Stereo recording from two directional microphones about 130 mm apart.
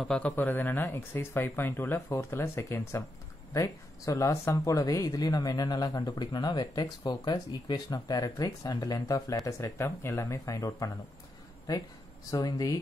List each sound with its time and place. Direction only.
0.0 s speech: 10° left (ahead or behind); by 12.7 s 25° left (ahead or behind)